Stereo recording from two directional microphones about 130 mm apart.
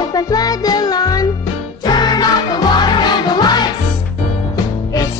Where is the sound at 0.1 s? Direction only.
30° left (ahead or behind).